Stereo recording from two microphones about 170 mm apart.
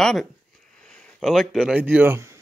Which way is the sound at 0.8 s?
5° left (ahead or behind).